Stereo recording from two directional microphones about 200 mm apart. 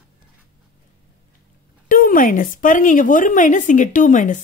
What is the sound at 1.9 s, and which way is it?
A woman's voice, 45° left (ahead or behind).